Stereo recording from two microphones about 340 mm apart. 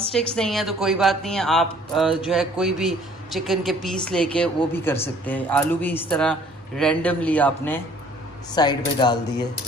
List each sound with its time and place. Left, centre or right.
0.1 s a woman's voice: centre